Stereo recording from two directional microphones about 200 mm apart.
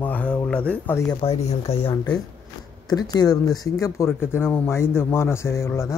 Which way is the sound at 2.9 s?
20° left (ahead or behind).